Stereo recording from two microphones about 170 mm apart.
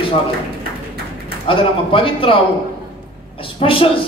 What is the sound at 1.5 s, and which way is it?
Speech, 30° left (ahead or behind).